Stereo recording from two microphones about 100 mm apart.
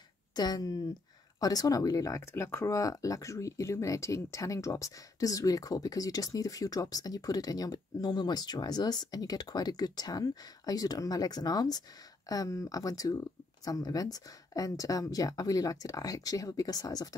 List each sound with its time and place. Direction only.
0.4 s speech: 40° left (ahead or behind)